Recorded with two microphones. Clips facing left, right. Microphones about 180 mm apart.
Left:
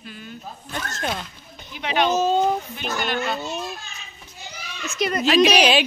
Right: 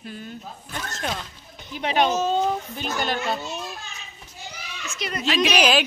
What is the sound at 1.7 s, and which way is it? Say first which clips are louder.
Speech: right 1 dB; 40° right (ahead or behind).